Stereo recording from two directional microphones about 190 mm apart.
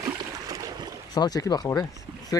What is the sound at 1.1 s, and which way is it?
Speech, 20° left (ahead or behind).